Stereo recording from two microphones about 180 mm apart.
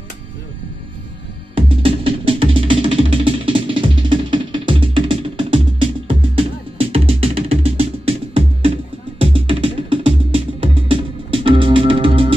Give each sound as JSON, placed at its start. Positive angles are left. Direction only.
{"t": 1.7, "sound": "music", "side_deg": -30}